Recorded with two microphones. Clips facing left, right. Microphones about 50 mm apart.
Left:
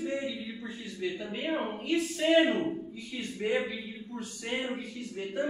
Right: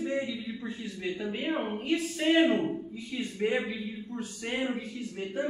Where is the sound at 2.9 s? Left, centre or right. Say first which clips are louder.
Right 3 dB; centre.